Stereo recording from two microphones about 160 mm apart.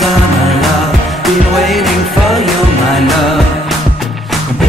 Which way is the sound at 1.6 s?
Centre (ahead or behind).